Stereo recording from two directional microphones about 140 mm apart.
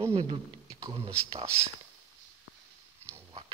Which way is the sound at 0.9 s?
45° right (ahead or behind).